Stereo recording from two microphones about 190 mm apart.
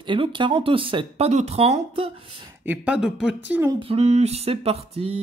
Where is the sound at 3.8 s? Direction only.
30° right (ahead or behind).